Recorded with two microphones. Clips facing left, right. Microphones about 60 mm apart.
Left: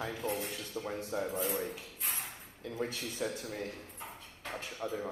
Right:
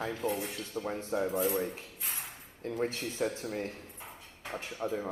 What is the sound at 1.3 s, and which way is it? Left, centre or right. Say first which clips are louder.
Speech: right 5 dB; centre.